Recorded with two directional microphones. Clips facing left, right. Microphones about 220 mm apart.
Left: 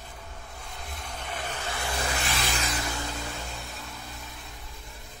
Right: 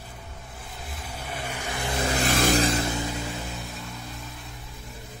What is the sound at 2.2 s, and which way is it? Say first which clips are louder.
Vehicle: right 10 dB; 45° right (ahead or behind).